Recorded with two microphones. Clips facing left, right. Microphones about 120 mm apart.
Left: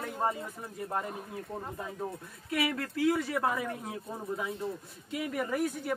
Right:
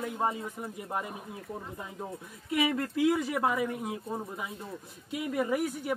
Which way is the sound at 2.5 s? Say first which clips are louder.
Right 3 dB; 20° right (ahead or behind).